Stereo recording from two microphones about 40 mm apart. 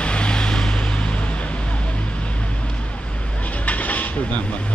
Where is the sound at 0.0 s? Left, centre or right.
Left.